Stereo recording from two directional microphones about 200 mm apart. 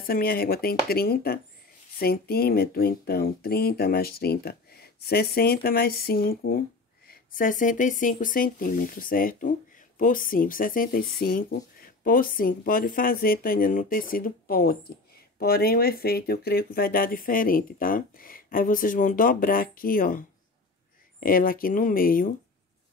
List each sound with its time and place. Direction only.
0.0 s speech: 50° left (ahead or behind)